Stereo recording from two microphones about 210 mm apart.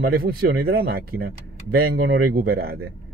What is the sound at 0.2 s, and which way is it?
Speech, 45° right (ahead or behind).